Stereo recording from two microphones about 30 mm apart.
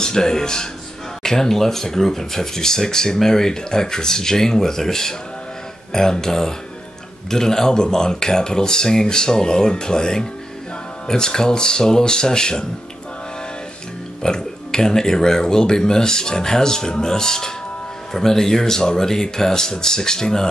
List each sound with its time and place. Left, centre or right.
0.0 s speech: left
5.9 s a sound: centre
6.2 s speech: centre
14.2 s speech: left